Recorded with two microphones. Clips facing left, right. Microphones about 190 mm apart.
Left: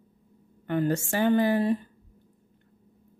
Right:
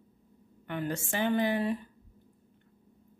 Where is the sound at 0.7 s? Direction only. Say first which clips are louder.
Left 8 dB; 40° left (ahead or behind).